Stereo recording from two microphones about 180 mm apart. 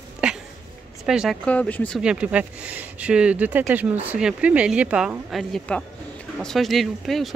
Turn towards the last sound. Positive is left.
turn(degrees=0)  # may be behind; listen again after turning